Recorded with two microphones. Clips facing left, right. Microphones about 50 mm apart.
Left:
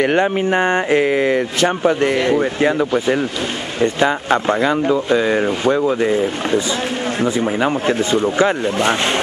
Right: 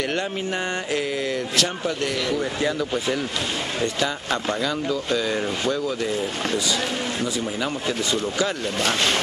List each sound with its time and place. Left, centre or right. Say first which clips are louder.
0.0 s speech: left 10 dB; left